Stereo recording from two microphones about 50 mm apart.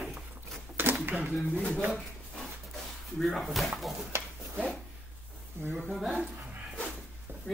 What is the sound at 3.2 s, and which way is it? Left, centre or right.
Speech, centre.